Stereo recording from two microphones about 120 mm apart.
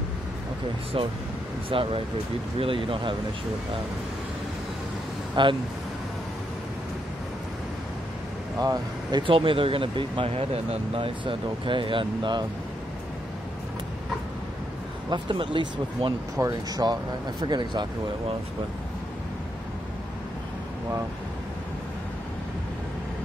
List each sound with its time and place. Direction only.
0.9 s speech: 50° right (ahead or behind)
5.3 s speech: 40° right (ahead or behind)
8.5 s speech: 30° right (ahead or behind)
9.2 s speech: 45° right (ahead or behind)
15.0 s speech: 40° right (ahead or behind)
16.3 s speech: 30° right (ahead or behind)